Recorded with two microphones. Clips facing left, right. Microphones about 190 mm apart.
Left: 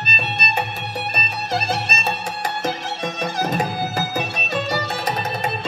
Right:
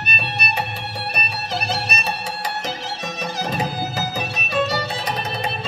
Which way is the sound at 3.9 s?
50° left (ahead or behind).